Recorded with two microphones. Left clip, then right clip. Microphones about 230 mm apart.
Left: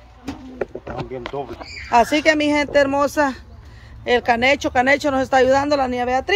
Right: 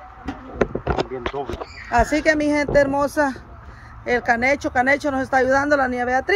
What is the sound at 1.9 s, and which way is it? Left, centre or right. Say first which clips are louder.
Speech: left 3 dB; centre.